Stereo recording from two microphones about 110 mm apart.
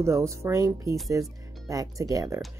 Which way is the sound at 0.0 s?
25° right (ahead or behind).